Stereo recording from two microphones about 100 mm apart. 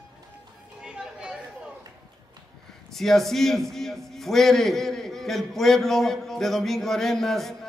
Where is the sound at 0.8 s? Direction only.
10° right (ahead or behind).